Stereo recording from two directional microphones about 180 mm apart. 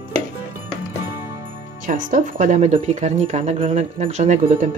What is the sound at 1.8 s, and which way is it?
Speech, 45° right (ahead or behind).